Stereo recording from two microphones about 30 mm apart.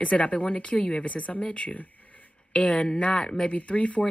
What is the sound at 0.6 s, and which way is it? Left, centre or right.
Speech, left.